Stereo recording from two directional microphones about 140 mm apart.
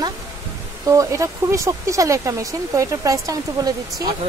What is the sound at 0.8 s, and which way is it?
Speech, 25° right (ahead or behind).